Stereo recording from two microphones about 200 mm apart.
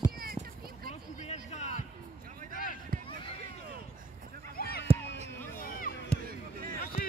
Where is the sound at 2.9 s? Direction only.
45° right (ahead or behind).